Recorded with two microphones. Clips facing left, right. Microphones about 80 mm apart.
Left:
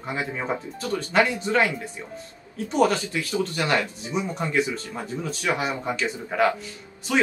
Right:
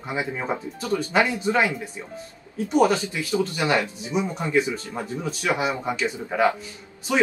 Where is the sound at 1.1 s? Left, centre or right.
Centre.